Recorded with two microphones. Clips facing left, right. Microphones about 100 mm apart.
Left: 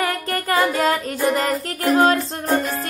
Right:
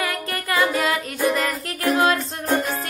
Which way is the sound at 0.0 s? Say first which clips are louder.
Left 4 dB; 35° left (ahead or behind).